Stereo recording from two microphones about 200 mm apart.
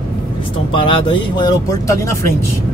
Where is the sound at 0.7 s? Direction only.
25° left (ahead or behind).